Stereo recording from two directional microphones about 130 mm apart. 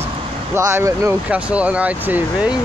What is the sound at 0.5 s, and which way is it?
Speech, 20° right (ahead or behind).